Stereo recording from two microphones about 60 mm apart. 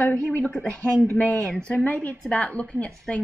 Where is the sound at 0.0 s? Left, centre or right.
Left.